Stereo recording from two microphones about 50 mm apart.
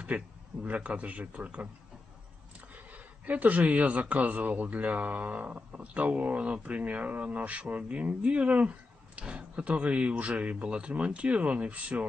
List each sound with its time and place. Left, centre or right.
0.1 s speech: right
2.7 s a man's voice: right